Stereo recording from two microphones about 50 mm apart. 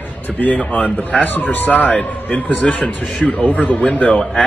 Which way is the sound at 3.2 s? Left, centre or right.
Left.